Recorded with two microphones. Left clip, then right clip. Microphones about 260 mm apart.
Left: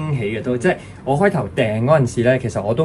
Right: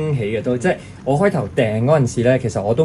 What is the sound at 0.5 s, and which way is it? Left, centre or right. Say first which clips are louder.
Speech: left 2 dB; left.